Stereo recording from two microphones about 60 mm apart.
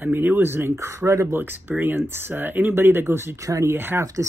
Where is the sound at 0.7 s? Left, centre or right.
Right.